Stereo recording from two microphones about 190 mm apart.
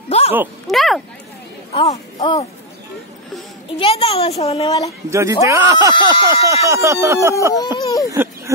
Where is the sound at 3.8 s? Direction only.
30° left (ahead or behind).